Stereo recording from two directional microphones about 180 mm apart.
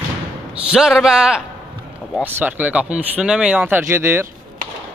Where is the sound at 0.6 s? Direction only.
5° right (ahead or behind).